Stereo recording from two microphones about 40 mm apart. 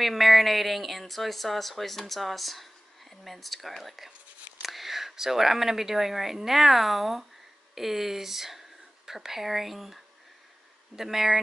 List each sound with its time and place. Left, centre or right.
0.0 s a woman's voice: centre
11.0 s speech: centre